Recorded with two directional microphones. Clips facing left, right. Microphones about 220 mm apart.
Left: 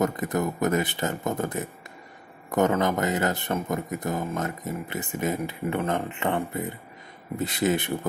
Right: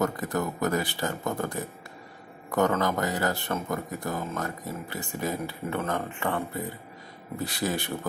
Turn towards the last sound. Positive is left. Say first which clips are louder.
# left 5 dB
turn(degrees=20)  # may be behind; listen again after turning